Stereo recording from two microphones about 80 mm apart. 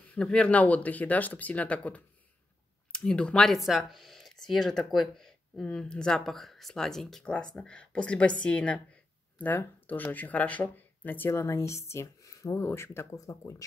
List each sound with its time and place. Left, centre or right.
0.1 s speech: centre; by 12.5 s left
12.5 s speech: left
13.1 s speech: left